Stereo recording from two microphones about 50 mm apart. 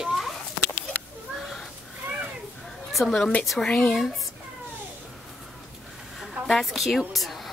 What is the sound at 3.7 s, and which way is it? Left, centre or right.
Speech, left.